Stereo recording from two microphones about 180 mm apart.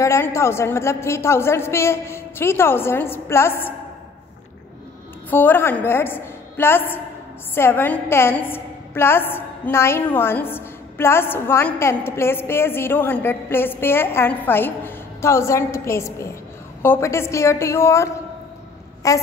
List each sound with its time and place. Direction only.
0.0 s a woman's voice: 15° left (ahead or behind)
5.3 s a woman's voice: 10° left (ahead or behind)